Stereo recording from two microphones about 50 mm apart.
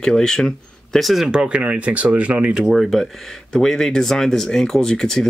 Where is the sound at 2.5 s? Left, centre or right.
Centre.